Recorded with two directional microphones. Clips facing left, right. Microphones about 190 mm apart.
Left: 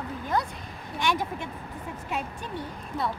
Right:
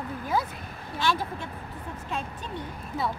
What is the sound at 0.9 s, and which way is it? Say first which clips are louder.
A woman's voice: even; 15° left (ahead or behind).